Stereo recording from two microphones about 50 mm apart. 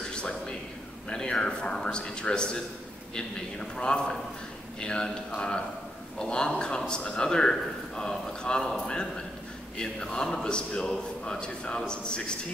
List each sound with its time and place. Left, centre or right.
0.1 s a sound: centre
1.0 s a man's voice: centre
9.8 s a man's voice: centre